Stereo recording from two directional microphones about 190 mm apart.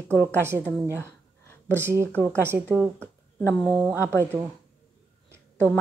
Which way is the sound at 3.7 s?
10° right (ahead or behind).